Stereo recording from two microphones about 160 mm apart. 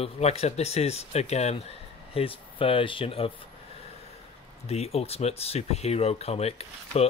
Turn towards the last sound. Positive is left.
turn(degrees=40)  # may be behind; listen again after turning